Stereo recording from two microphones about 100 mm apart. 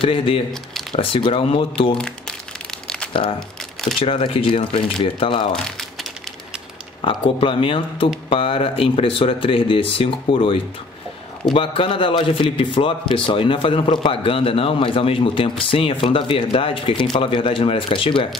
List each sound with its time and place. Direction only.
0.0 s a man's voice: 60° left (ahead or behind)
2.0 s speech: 10° left (ahead or behind)
3.1 s a man's voice: 65° left (ahead or behind)
5.5 s crumpling: 5° left (ahead or behind)
7.1 s a man's voice: 60° left (ahead or behind)